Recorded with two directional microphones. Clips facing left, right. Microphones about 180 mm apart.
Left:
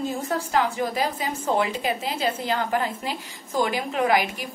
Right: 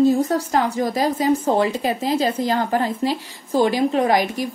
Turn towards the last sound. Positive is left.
turn(degrees=-40)  # may be behind; listen again after turning